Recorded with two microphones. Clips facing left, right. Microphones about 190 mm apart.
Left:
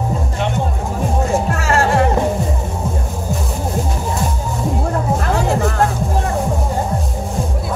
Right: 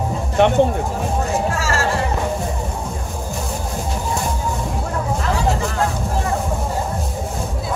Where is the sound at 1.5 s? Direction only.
60° left (ahead or behind).